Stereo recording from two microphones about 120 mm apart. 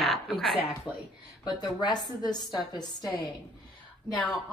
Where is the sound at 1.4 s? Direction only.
40° left (ahead or behind).